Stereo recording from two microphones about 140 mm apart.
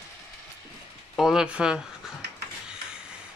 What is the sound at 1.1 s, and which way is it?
Speech, 5° right (ahead or behind).